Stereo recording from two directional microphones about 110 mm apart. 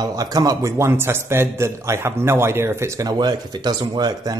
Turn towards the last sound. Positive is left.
turn(degrees=-35)  # may be behind; listen again after turning